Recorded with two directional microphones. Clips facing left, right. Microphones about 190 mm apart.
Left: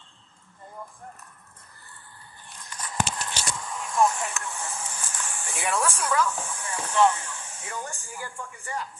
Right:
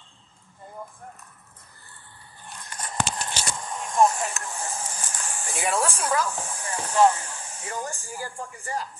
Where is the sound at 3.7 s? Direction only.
35° right (ahead or behind).